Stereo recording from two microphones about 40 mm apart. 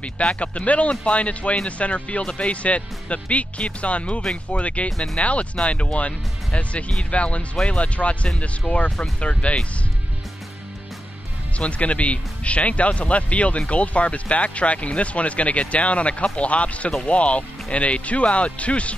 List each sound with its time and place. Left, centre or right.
0.0 s speech: left
4.9 s speech: centre
5.2 s speech: left
11.5 s speech: left